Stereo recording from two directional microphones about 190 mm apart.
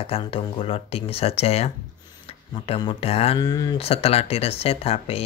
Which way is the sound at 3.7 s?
30° left (ahead or behind).